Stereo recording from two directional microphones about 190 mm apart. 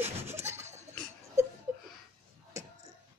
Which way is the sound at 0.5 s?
35° right (ahead or behind).